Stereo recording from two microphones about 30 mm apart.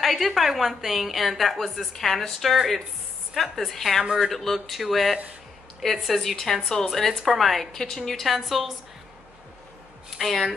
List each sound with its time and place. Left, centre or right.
0.0 s a woman's voice: centre
1.9 s a woman's voice: centre
4.0 s speech: right
4.3 s a woman's voice: centre
6.3 s a woman's voice: centre
7.7 s a woman's voice: centre
8.3 s a woman's voice: centre
10.1 s a woman's voice: centre